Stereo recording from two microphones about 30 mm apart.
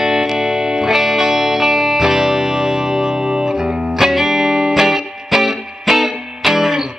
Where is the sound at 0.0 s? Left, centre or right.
Centre.